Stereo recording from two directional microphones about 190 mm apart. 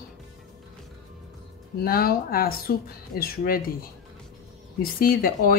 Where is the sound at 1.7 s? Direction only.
55° left (ahead or behind).